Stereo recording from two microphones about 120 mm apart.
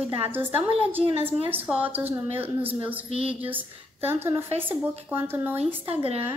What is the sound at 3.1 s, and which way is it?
Speech, 50° right (ahead or behind).